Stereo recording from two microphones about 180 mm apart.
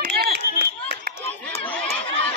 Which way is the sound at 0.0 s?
65° right (ahead or behind).